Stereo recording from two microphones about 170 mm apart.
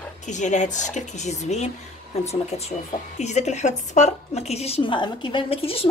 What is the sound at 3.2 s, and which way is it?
A woman's voice, 40° left (ahead or behind).